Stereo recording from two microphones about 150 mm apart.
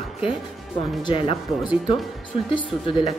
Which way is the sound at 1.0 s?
35° left (ahead or behind).